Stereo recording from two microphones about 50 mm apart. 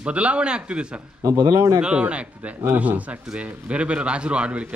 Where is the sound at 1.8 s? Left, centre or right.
Right.